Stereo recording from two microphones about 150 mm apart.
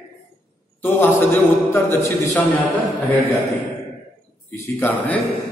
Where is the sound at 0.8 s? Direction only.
15° left (ahead or behind).